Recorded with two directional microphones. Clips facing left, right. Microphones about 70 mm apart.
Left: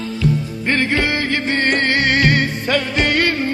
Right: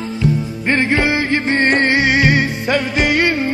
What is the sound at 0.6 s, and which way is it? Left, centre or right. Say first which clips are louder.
Music: right 3 dB; right.